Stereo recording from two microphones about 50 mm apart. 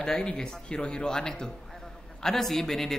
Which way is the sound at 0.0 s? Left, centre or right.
Centre.